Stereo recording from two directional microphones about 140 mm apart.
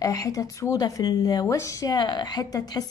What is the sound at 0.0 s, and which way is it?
A woman's voice, 25° left (ahead or behind).